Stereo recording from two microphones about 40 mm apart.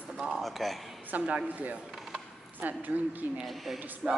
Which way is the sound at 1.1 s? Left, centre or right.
Right.